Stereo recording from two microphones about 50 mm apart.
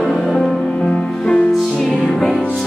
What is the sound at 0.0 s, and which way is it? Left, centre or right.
Music, centre.